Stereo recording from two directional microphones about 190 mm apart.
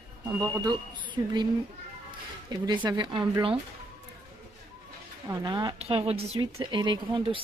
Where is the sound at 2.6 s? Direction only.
25° right (ahead or behind).